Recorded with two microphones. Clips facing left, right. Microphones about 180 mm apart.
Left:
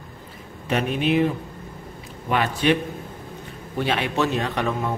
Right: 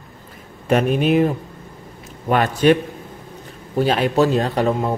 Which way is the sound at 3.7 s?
40° right (ahead or behind).